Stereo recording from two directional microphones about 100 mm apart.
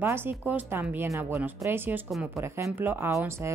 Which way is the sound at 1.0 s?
30° right (ahead or behind).